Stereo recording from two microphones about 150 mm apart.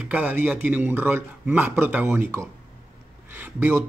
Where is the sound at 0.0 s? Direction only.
10° right (ahead or behind).